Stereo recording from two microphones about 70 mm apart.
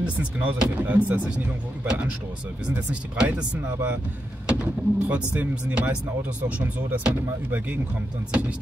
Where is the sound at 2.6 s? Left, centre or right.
Centre.